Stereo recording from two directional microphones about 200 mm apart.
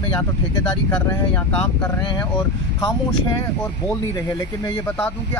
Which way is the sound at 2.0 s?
20° left (ahead or behind).